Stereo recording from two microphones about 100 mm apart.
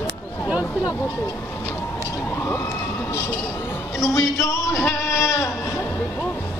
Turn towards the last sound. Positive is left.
turn(degrees=30)  # may be behind; listen again after turning